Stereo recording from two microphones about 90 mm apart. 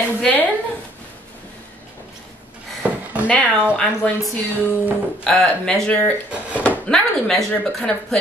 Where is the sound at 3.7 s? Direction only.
10° left (ahead or behind).